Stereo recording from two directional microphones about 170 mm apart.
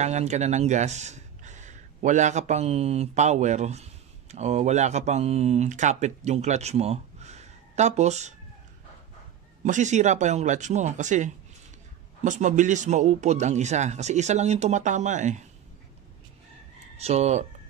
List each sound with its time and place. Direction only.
0.0 s speech: 40° right (ahead or behind)
9.7 s speech: 45° right (ahead or behind)
16.9 s speech: 40° right (ahead or behind)